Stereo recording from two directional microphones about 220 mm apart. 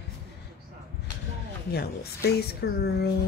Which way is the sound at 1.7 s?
45° left (ahead or behind).